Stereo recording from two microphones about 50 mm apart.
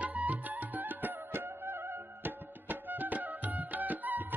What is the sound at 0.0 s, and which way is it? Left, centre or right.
Music, right.